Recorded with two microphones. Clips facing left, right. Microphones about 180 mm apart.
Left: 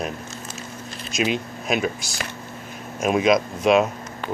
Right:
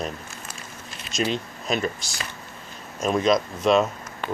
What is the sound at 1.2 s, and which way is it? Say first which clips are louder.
Speech: left 2 dB; 10° left (ahead or behind).